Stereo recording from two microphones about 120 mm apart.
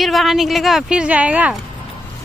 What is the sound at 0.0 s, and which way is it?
Speech, centre (ahead or behind).